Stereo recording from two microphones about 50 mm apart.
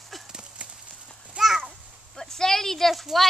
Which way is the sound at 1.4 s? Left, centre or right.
Right.